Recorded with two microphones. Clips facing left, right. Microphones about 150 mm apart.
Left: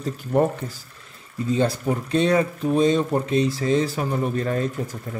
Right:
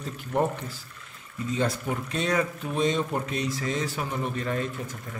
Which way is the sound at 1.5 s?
35° left (ahead or behind).